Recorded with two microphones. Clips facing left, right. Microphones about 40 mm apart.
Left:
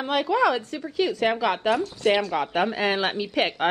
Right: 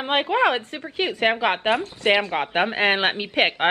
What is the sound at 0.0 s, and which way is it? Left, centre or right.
A woman's voice, right.